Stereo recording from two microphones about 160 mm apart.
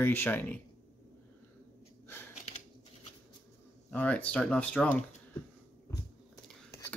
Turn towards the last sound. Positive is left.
turn(degrees=15)  # may be behind; listen again after turning